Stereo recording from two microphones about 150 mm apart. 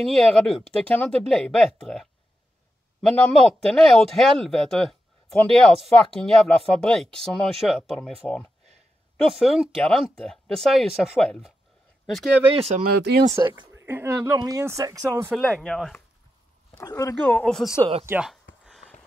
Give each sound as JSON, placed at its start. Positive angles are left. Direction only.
{"t": 0.0, "sound": "speech", "side_deg": 5}
{"t": 12.8, "sound": "speech", "side_deg": -90}
{"t": 13.3, "sound": "speech", "side_deg": -15}
{"t": 15.3, "sound": "speech", "side_deg": 0}
{"t": 16.7, "sound": "speech", "side_deg": 20}
{"t": 17.3, "sound": "speech", "side_deg": 5}
{"t": 17.7, "sound": "speech", "side_deg": -35}
{"t": 18.2, "sound": "a sound", "side_deg": -5}